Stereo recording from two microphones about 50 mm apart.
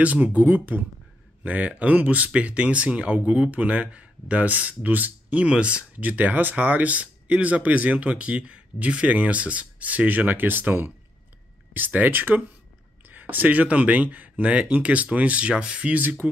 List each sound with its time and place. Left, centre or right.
0.0 s speech: right
5.9 s speech: right
15.9 s speech: right